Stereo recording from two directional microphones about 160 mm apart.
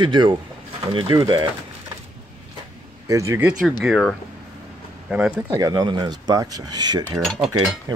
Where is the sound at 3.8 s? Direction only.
Centre (ahead or behind).